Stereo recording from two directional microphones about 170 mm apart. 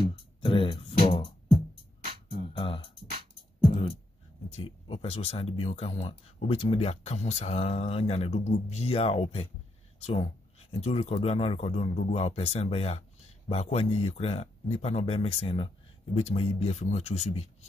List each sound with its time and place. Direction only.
0.4 s speech: 30° left (ahead or behind)
2.5 s music: 30° left (ahead or behind)
4.5 s speech: 30° left (ahead or behind)